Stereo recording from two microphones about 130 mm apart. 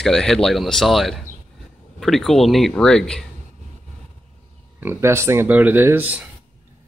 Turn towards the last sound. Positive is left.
turn(degrees=-10)  # may be behind; listen again after turning